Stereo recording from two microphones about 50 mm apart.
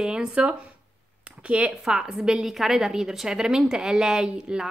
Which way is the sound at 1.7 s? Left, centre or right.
Centre.